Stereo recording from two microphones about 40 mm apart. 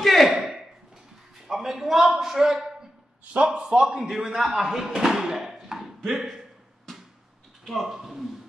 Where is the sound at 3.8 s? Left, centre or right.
Centre.